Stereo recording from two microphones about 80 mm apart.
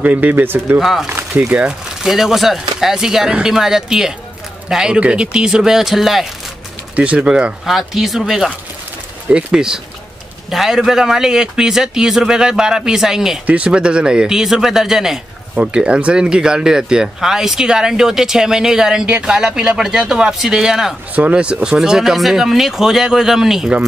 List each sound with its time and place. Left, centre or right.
0.0 s speech: right
0.7 s speech: centre
1.0 s speech: right
1.5 s speech: centre
2.0 s speech: centre
7.0 s speech: centre
7.6 s speech: centre
21.1 s speech: centre